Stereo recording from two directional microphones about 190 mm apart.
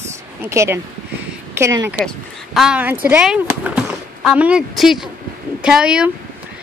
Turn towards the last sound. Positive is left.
turn(degrees=-5)  # may be behind; listen again after turning